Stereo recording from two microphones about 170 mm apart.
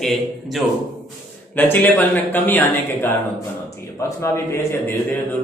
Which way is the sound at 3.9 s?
15° left (ahead or behind).